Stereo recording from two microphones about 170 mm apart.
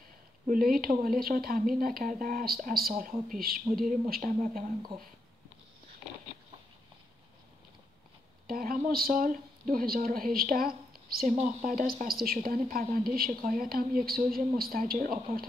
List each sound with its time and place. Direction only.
0.5 s a woman's voice: 55° right (ahead or behind)
8.5 s a woman's voice: 60° right (ahead or behind)